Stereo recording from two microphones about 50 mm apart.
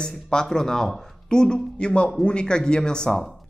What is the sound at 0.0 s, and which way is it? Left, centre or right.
Speech, centre.